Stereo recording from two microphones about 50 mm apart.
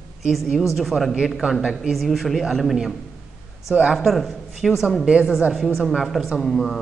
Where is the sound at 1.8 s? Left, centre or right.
Centre.